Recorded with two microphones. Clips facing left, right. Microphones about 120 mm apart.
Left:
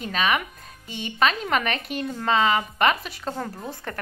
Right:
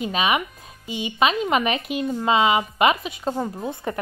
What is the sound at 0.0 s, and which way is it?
Speech, 10° right (ahead or behind).